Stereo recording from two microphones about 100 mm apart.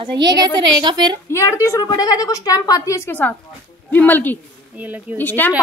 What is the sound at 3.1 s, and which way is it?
Speech, 15° left (ahead or behind).